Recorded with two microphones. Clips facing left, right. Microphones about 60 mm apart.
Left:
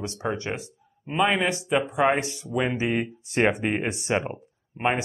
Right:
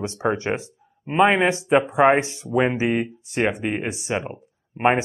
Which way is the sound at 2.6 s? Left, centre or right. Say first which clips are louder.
Right 5 dB; centre.